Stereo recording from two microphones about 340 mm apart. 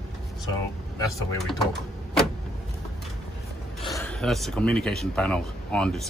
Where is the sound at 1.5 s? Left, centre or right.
Centre.